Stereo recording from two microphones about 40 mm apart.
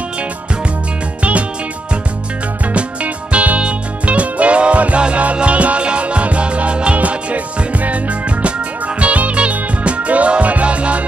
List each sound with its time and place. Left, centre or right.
2.7 s music: right